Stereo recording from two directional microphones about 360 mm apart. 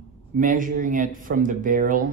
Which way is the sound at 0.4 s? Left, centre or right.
Right.